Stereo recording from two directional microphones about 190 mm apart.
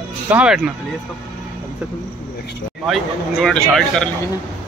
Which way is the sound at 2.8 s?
Centre (ahead or behind).